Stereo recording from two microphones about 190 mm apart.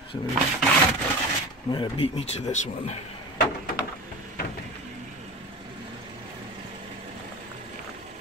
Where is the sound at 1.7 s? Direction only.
25° left (ahead or behind).